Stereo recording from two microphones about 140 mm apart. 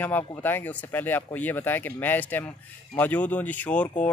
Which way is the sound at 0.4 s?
15° left (ahead or behind).